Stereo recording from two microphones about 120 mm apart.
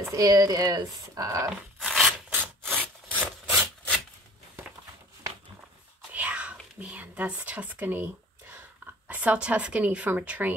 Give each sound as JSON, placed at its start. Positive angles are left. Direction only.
{"t": 0.1, "sound": "speech", "side_deg": -30}
{"t": 1.8, "sound": "rub", "side_deg": 0}
{"t": 2.2, "sound": "wood", "side_deg": -15}
{"t": 6.1, "sound": "whispering", "side_deg": -10}